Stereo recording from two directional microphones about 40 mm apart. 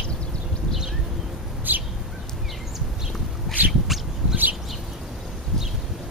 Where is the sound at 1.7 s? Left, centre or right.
Right.